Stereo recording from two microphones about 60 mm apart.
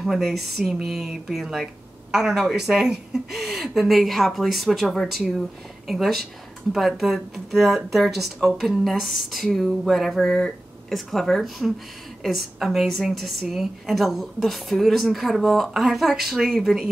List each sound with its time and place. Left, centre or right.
0.0 s speech: centre
2.6 s speech: centre